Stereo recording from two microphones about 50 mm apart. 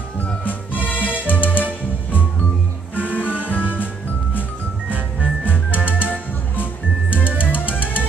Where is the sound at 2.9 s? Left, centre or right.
Left.